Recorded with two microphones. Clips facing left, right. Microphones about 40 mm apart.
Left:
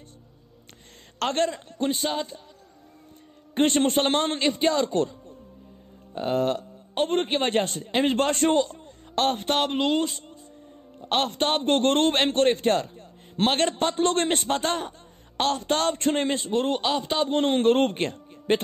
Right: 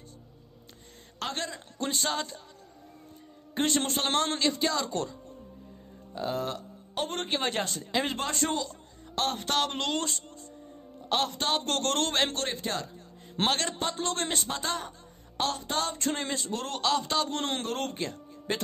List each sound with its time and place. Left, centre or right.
1.2 s a man's voice: left
1.8 s a man's voice: left
3.5 s a man's voice: left
6.1 s a sound: left
7.1 s a man's voice: left
9.7 s speech: centre
11.0 s a man's voice: left
11.6 s a man's voice: left
16.0 s a man's voice: left
17.6 s a man's voice: left